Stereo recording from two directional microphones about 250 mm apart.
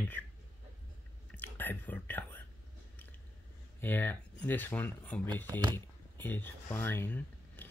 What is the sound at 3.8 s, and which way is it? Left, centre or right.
Speech, centre.